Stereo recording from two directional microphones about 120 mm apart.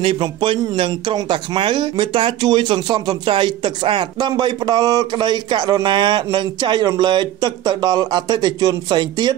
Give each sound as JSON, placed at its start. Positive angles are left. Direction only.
{"t": 0.0, "sound": "speech", "side_deg": -45}